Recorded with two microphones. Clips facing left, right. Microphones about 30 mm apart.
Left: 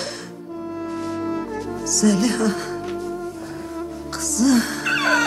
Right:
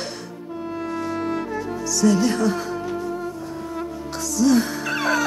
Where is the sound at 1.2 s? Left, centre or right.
Right.